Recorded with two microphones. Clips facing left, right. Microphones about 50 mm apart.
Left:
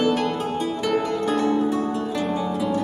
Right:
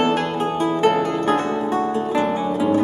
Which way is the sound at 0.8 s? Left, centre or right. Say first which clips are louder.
Right 4 dB; right.